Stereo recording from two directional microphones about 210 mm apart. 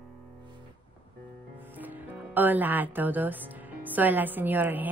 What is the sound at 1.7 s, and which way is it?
Speech, 10° right (ahead or behind).